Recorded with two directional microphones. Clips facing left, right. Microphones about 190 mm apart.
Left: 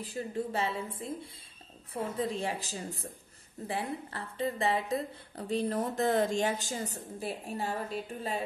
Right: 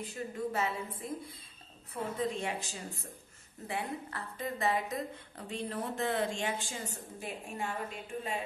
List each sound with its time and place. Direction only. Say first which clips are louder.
0.0 s a woman's voice: left 2 dB; 30° left (ahead or behind)